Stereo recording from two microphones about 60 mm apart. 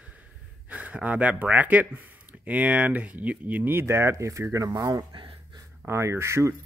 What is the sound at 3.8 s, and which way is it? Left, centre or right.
Speech, right.